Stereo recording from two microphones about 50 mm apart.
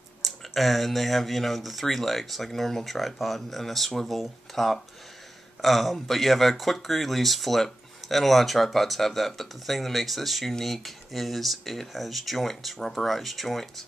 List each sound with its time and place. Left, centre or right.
0.2 s speech: centre